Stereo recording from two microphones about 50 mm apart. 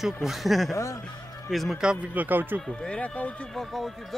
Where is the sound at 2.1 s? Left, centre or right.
Right.